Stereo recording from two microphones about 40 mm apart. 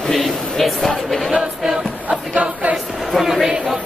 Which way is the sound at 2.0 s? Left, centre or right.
Right.